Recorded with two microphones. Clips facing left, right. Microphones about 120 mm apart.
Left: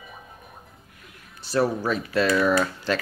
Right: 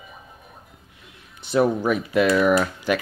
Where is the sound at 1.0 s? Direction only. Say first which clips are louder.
Even; 20° right (ahead or behind).